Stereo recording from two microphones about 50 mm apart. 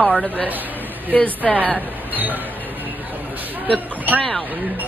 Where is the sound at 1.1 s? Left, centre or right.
Left.